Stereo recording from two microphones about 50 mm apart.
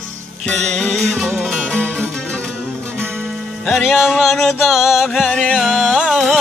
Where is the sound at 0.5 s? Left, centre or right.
Centre.